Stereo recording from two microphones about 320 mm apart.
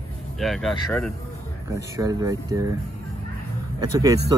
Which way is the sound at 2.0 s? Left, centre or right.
Centre.